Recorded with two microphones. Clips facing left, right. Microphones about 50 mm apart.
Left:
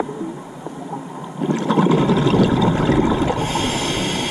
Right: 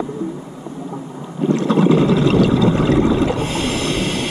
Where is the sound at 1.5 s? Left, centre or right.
Centre.